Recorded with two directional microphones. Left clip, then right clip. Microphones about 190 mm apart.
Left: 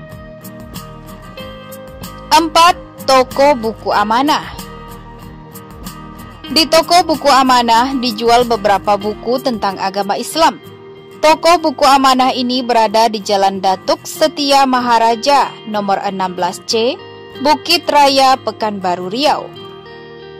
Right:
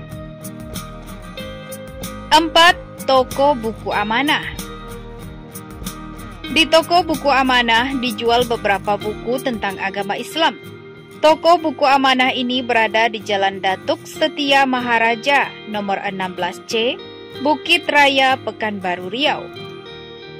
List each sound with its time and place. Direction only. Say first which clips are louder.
2.3 s speech: left 2 dB; 25° left (ahead or behind)
6.5 s speech: left 3 dB; 25° left (ahead or behind)
8.0 s speech: left 4 dB; 90° left
8.3 s speech: left 6 dB; 25° left (ahead or behind)